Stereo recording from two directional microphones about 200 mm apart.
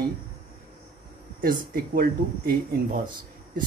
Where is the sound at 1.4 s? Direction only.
45° right (ahead or behind).